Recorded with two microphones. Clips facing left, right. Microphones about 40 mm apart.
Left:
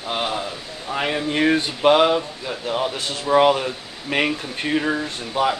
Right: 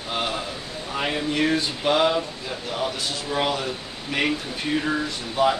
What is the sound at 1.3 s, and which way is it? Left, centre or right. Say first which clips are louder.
Speech: left 4 dB; left.